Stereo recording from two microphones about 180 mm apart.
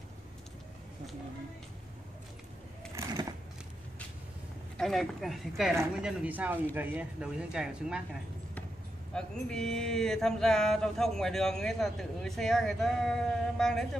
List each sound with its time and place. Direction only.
4.7 s speech: centre (ahead or behind)
9.1 s speech: 5° left (ahead or behind)